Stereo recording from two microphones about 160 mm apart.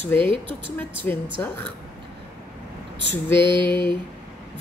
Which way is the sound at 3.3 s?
30° right (ahead or behind).